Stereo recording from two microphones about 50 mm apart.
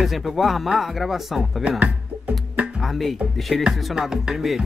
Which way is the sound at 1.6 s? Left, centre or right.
Right.